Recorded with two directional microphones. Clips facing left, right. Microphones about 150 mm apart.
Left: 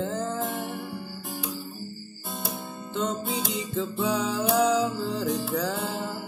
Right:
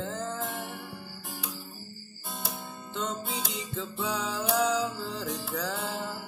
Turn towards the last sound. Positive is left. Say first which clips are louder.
# left 6 dB
turn(degrees=35)  # may be behind; listen again after turning